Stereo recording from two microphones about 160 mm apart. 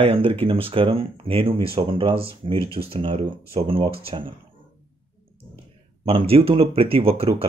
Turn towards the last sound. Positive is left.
turn(degrees=-35)  # may be behind; listen again after turning